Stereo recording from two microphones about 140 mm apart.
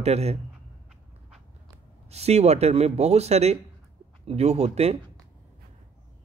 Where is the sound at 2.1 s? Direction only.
50° right (ahead or behind).